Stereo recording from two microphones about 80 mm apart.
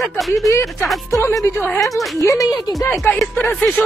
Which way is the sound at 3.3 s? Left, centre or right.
Centre.